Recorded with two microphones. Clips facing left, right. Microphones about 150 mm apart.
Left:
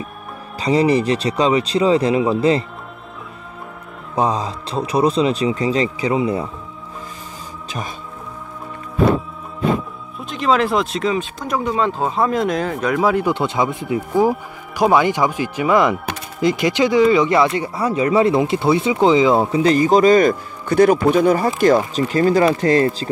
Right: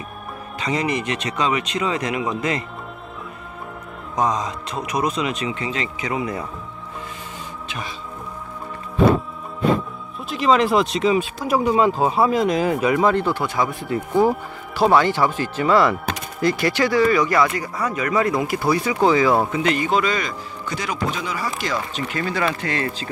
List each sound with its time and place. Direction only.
0.6 s a man's voice: 35° left (ahead or behind)
4.1 s a man's voice: 30° left (ahead or behind)
10.3 s speech: centre (ahead or behind)
13.1 s speech: 15° left (ahead or behind)
13.9 s speech: 10° left (ahead or behind)
19.5 s a man's voice: 35° left (ahead or behind)